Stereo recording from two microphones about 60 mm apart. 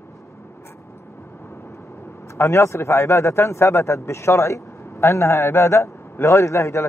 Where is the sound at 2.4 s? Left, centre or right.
Left.